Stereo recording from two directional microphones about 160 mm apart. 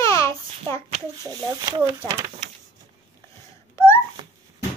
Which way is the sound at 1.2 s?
25° right (ahead or behind).